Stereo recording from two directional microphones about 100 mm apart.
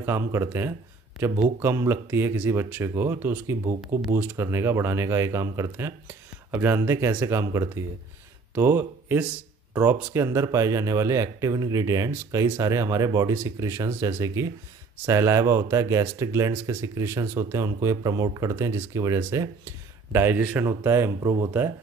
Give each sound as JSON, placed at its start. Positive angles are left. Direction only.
{"t": 0.0, "sound": "speech", "side_deg": -25}
{"t": 10.1, "sound": "speech", "side_deg": -30}